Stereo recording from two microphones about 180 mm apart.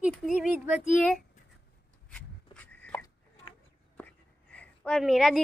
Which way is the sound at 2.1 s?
5° left (ahead or behind).